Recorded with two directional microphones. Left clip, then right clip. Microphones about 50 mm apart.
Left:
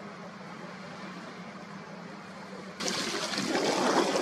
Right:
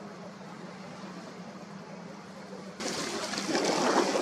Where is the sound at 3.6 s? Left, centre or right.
Left.